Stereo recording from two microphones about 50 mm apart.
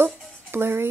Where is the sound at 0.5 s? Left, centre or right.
Right.